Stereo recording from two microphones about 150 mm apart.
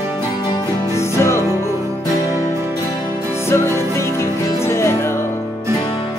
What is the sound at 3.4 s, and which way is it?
Music, 20° left (ahead or behind).